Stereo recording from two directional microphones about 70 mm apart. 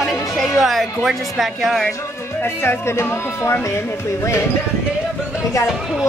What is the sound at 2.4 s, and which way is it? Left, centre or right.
Speech, left.